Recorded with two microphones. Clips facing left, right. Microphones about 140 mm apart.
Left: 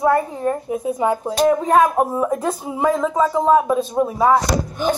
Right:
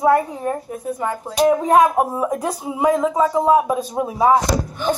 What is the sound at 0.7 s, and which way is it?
Speech, 10° left (ahead or behind).